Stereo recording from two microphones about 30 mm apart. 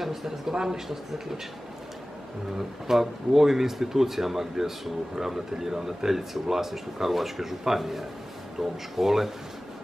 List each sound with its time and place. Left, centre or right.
0.0 s speech: centre
2.9 s speech: centre